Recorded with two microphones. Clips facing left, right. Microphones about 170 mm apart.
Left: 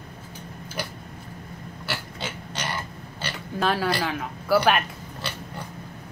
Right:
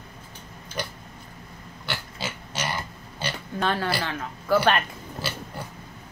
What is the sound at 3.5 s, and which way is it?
Speech, 5° left (ahead or behind).